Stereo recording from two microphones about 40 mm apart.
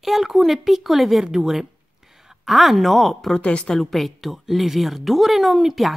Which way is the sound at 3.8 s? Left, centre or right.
Centre.